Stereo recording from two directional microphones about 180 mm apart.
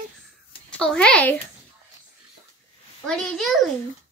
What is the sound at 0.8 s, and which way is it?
Child singing, 5° left (ahead or behind).